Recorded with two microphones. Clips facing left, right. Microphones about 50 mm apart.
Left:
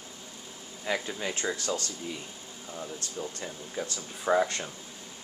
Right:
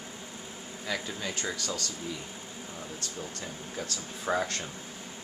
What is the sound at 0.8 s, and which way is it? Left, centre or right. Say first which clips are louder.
Speech: left 3 dB; left.